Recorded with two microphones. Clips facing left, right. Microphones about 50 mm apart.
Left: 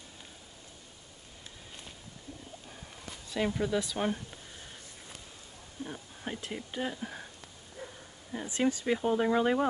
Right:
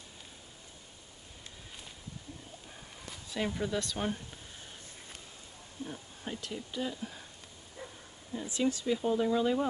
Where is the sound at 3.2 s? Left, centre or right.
Centre.